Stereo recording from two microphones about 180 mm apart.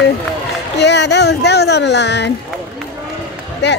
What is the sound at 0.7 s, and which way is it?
Speech, 70° left (ahead or behind).